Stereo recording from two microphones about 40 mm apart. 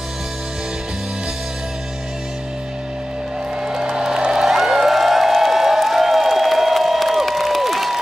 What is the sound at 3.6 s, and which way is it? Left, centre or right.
Music, centre.